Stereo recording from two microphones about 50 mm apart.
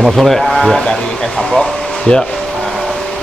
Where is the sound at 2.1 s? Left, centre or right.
Centre.